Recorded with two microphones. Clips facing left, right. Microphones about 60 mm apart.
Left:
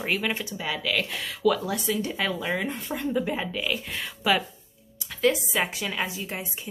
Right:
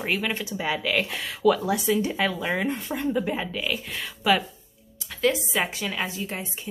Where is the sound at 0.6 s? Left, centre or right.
Centre.